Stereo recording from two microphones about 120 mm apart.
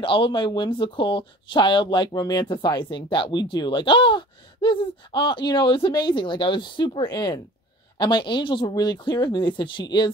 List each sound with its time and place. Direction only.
0.0 s speech: 45° left (ahead or behind)